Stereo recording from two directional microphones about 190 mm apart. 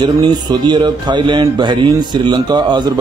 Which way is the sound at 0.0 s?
25° right (ahead or behind).